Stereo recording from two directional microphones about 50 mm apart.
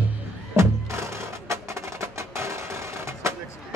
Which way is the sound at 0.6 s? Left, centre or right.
Right.